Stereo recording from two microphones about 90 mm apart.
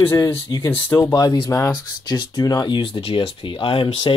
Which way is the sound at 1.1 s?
50° left (ahead or behind).